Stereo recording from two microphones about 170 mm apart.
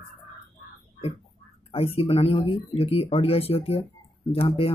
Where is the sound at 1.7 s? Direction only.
35° left (ahead or behind).